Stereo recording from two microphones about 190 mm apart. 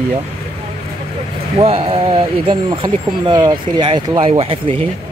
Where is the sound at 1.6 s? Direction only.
30° right (ahead or behind).